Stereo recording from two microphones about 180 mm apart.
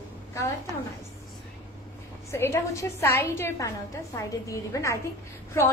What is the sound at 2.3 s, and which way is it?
A woman's voice, 15° left (ahead or behind).